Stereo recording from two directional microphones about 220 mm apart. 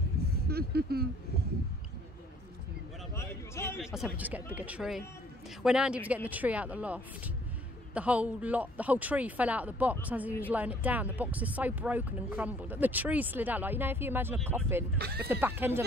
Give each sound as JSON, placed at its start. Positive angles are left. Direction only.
{"t": 0.5, "sound": "speech", "side_deg": -45}
{"t": 3.2, "sound": "a sound", "side_deg": 10}
{"t": 3.8, "sound": "speech", "side_deg": -5}
{"t": 15.0, "sound": "speech", "side_deg": -45}
{"t": 15.4, "sound": "speech", "side_deg": -10}